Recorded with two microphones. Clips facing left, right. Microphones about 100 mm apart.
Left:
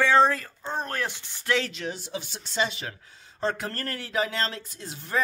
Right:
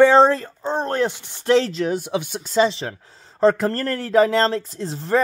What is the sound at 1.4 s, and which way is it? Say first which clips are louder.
Speech: right 10 dB; 35° right (ahead or behind).